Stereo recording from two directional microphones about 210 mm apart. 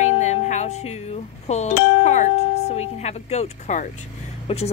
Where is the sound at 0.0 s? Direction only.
35° left (ahead or behind).